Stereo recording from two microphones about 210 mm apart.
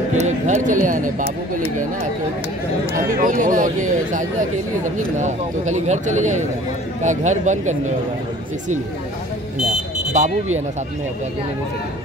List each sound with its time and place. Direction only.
0.2 s speech: 35° right (ahead or behind)
3.2 s speech: 40° right (ahead or behind)
10.1 s speech: 35° right (ahead or behind)